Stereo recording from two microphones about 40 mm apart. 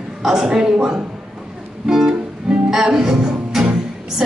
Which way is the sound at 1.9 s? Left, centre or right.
Centre.